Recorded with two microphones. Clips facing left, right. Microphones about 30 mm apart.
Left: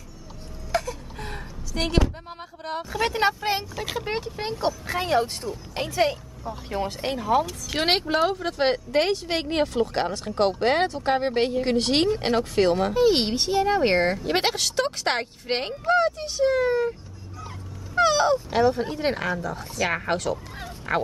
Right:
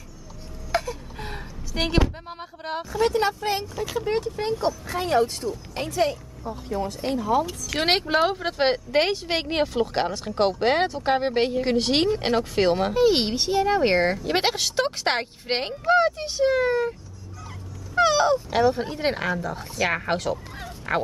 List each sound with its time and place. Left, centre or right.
0.7 s music: centre
1.7 s speech: centre
2.9 s speech: left
6.5 s speech: left
7.2 s speech: left
7.8 s speech: centre
8.1 s speech: centre
17.9 s speech: centre